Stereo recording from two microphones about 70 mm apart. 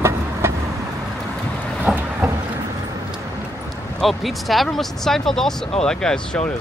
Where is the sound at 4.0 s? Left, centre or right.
Centre.